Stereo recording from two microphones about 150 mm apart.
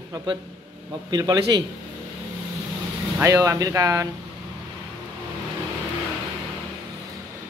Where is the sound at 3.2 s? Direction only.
20° right (ahead or behind).